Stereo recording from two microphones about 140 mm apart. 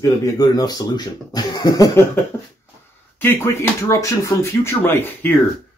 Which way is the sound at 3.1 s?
15° left (ahead or behind).